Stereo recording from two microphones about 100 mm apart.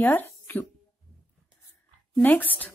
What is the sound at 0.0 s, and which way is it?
Speech, 20° left (ahead or behind).